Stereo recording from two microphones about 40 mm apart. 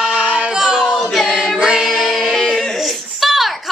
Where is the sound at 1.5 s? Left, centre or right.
Centre.